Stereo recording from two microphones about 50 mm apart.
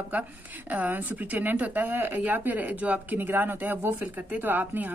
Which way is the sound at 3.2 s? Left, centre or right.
Right.